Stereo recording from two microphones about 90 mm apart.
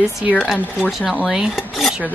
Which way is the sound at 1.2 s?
5° right (ahead or behind).